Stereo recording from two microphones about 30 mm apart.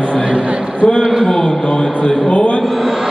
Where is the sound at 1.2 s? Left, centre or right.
Centre.